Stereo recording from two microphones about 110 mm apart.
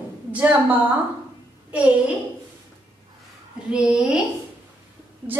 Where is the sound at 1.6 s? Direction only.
10° right (ahead or behind).